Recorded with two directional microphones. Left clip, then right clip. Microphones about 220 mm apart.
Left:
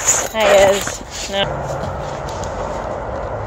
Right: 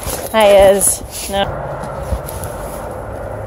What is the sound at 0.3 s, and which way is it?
Speech, 40° right (ahead or behind).